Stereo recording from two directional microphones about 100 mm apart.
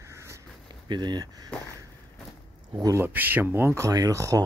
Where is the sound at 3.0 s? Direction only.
20° right (ahead or behind); by 4.5 s 35° right (ahead or behind).